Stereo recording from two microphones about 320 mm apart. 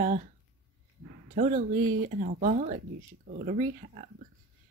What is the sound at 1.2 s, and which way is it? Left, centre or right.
Speech, right.